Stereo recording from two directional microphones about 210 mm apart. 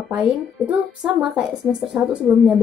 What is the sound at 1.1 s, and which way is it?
A woman's voice, centre (ahead or behind).